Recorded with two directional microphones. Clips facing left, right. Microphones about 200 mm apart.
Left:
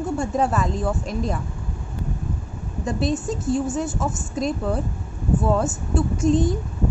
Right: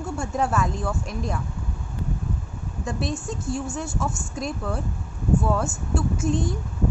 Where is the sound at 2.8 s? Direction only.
Centre (ahead or behind).